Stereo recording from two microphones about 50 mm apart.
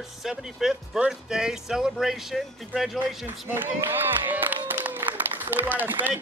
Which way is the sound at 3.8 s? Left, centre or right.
Right.